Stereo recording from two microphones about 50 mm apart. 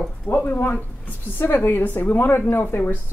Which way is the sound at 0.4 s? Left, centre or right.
Left.